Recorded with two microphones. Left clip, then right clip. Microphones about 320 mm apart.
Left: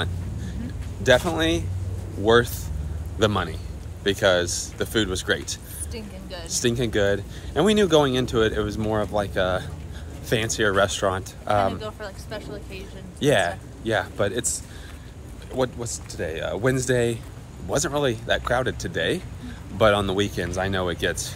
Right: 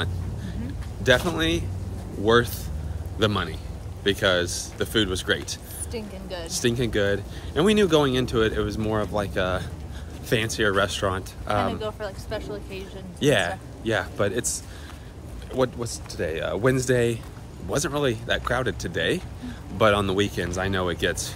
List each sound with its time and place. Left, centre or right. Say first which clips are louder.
1.0 s speech: left 2 dB; centre
5.9 s speech: right 4 dB; centre
6.5 s speech: left 1 dB; centre
13.2 s speech: left 1 dB; centre